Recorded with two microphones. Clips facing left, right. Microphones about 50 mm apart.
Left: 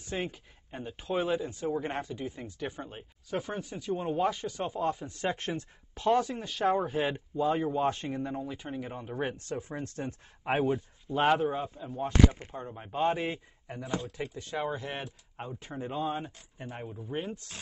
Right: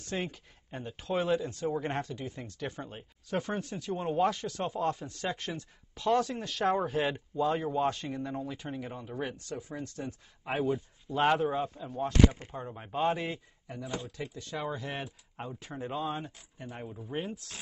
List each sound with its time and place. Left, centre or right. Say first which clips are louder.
0.0 s speech: left 1 dB; centre; by 6.0 s left
6.0 s speech: left 1 dB; centre
6.6 s speech: left 1 dB; centre
7.9 s speech: left 2 dB; left
9.0 s speech: left 3 dB; left
11.1 s speech: left 1 dB; centre
12.1 s speech: even; left
12.5 s speech: left 1 dB; centre
13.7 s speech: left 1 dB; left
14.3 s speech: left 3 dB; centre
14.7 s speech: left 1 dB; centre
16.2 s speech: left 2 dB; left
16.9 s speech: even; centre